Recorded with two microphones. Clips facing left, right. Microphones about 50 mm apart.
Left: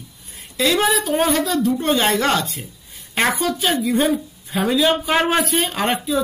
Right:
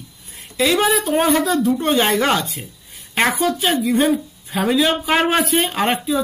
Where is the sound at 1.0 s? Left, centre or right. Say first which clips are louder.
Right 2 dB; centre.